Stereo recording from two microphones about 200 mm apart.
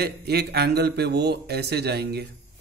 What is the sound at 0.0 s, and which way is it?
A man's voice, 55° right (ahead or behind).